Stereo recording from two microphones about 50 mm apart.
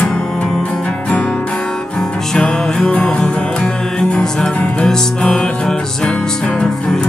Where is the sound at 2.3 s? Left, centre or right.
Centre.